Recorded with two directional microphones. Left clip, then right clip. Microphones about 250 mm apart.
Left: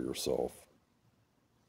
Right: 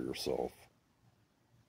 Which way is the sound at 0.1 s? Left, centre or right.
Centre.